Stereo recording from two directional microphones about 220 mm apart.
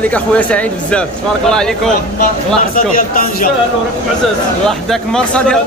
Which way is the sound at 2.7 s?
40° left (ahead or behind).